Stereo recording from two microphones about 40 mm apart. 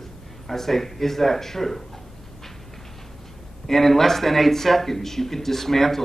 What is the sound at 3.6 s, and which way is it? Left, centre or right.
Speech, centre.